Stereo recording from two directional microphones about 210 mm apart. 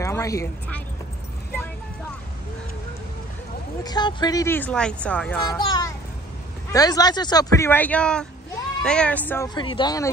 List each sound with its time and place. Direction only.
0.0 s speech: 15° left (ahead or behind)
3.8 s speech: 20° left (ahead or behind)
5.4 s a child's voice: 15° left (ahead or behind)
9.5 s speech: 20° left (ahead or behind)